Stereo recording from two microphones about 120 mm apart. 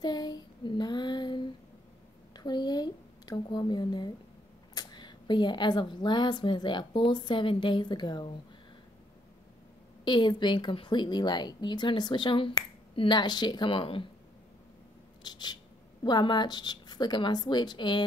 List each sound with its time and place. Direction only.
0.0 s child singing: 35° left (ahead or behind)
2.3 s a sound: 35° left (ahead or behind)
4.7 s speech: 40° left (ahead or behind)
10.0 s speech: 40° left (ahead or behind)
15.2 s speech: 35° left (ahead or behind)